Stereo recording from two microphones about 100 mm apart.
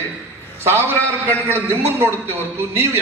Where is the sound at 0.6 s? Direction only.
25° right (ahead or behind).